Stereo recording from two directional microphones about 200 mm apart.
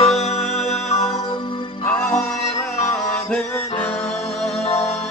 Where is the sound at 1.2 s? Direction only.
25° left (ahead or behind).